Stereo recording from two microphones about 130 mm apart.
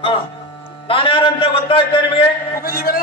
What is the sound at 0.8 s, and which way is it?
Speech, 45° left (ahead or behind).